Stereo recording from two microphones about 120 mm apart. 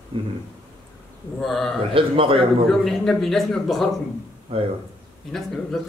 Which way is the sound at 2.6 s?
5° left (ahead or behind).